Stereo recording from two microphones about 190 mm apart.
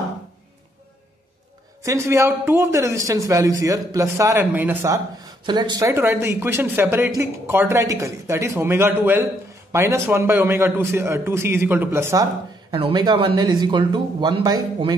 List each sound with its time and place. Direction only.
1.8 s a man's voice: 15° right (ahead or behind)
12.7 s speech: 25° right (ahead or behind)